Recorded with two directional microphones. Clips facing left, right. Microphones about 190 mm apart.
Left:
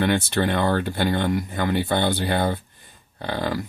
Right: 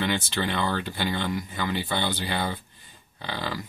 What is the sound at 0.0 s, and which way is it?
Speech, 55° left (ahead or behind).